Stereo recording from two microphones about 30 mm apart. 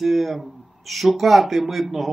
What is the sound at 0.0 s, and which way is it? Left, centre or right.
Speech, centre.